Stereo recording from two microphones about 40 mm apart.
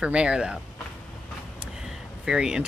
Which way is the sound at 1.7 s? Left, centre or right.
Centre.